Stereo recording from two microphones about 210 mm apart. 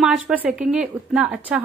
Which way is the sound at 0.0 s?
5° right (ahead or behind).